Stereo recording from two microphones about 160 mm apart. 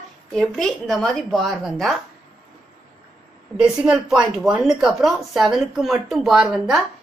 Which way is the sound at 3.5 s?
5° right (ahead or behind).